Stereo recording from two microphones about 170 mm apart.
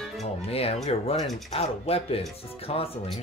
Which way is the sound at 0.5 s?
35° left (ahead or behind).